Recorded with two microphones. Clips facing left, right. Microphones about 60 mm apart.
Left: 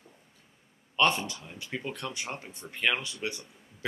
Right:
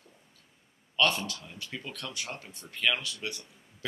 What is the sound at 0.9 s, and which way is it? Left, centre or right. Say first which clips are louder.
Speech: left 2 dB; left.